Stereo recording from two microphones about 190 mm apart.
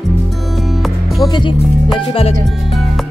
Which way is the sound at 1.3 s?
25° left (ahead or behind).